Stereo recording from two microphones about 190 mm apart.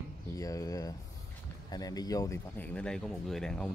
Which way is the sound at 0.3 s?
15° left (ahead or behind).